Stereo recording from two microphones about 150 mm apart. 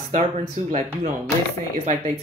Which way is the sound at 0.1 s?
40° right (ahead or behind).